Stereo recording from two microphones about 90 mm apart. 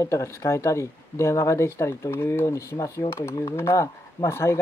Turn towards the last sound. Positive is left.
turn(degrees=30)  # may be behind; listen again after turning